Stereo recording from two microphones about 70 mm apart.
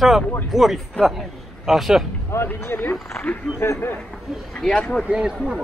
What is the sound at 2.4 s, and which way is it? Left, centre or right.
Speech, left.